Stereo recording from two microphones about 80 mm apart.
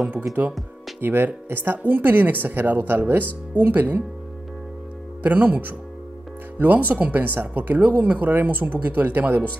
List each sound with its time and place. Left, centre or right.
0.3 s speech: centre
5.2 s speech: right